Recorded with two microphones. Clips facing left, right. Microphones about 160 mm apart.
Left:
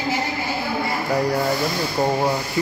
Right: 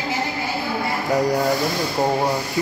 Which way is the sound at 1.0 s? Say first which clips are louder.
Right 2 dB; 20° right (ahead or behind).